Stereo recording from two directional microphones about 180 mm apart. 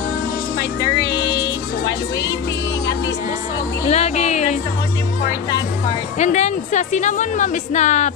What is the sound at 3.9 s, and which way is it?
Speech, 35° left (ahead or behind).